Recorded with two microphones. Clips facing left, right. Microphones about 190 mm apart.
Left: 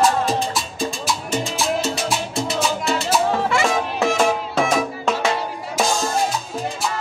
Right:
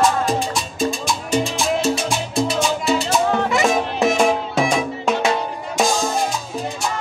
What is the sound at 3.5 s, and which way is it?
Music, 20° right (ahead or behind).